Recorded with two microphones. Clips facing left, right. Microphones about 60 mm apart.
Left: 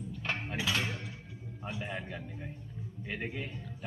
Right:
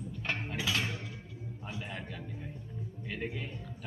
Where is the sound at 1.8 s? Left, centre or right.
Centre.